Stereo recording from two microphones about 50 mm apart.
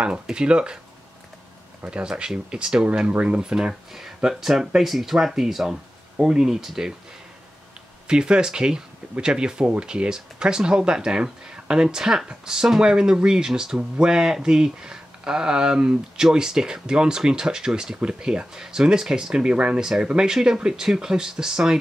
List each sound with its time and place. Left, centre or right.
0.0 s speech: right
1.9 s speech: centre
3.9 s speech: centre
8.1 s speech: centre